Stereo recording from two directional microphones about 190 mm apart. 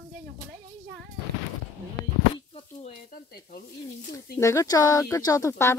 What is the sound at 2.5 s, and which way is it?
Speech, 35° left (ahead or behind).